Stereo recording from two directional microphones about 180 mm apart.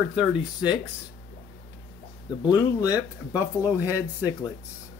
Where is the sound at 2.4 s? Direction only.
20° left (ahead or behind).